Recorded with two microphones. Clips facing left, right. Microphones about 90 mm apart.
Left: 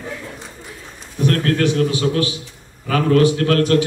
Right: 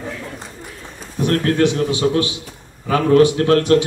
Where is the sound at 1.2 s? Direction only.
25° right (ahead or behind).